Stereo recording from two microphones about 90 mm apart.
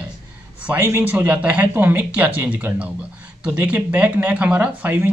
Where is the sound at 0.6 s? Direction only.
20° right (ahead or behind).